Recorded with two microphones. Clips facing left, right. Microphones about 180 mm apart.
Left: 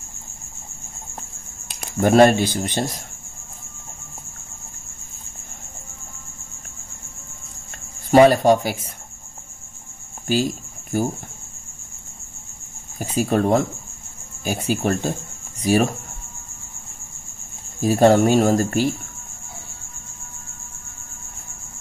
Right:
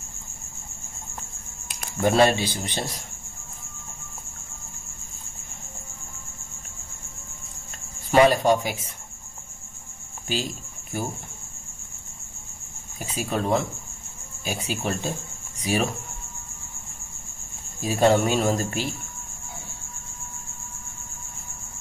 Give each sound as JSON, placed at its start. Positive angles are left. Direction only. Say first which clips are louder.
{"t": 2.0, "sound": "speech", "louder": "left 6 dB", "side_deg": 50}
{"t": 8.1, "sound": "speech", "louder": "left 5 dB", "side_deg": 45}
{"t": 10.2, "sound": "speech", "louder": "left 8 dB", "side_deg": 45}
{"t": 13.0, "sound": "speech", "louder": "left 7 dB", "side_deg": 45}
{"t": 17.7, "sound": "speech", "louder": "left 5 dB", "side_deg": 45}